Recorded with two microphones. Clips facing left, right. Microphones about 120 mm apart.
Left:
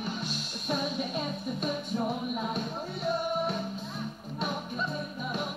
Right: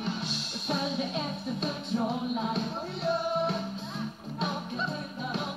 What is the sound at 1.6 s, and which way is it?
Music, 25° right (ahead or behind).